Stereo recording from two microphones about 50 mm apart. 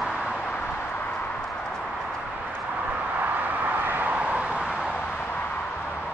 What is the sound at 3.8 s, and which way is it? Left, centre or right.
Vehicle, right.